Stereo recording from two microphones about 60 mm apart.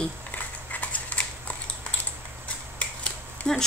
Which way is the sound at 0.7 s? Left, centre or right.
Left.